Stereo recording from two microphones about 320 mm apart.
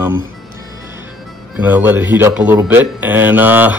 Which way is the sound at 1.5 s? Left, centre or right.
Centre.